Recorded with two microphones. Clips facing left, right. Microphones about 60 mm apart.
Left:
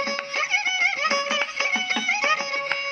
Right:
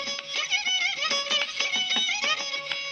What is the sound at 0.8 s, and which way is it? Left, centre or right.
Music, left.